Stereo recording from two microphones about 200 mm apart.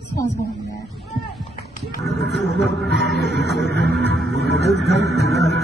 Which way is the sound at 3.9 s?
55° right (ahead or behind).